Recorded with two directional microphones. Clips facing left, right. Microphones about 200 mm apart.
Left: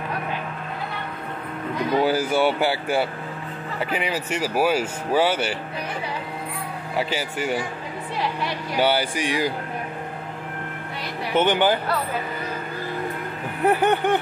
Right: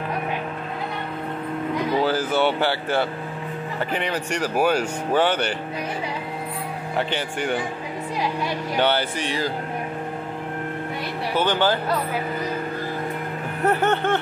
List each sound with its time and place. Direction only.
2.0 s a sound: 10° left (ahead or behind)
3.9 s speech: 5° left (ahead or behind)
7.0 s speech: 5° left (ahead or behind)
8.7 s speech: 10° left (ahead or behind)
11.3 s speech: 20° left (ahead or behind)
13.7 s speech: 15° left (ahead or behind)